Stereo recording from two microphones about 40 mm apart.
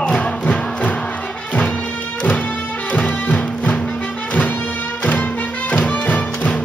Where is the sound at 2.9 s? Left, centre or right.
Left.